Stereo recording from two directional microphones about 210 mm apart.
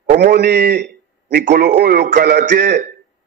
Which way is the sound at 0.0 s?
50° right (ahead or behind).